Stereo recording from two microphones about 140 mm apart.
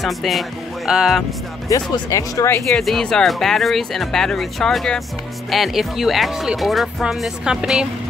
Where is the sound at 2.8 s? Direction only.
5° left (ahead or behind).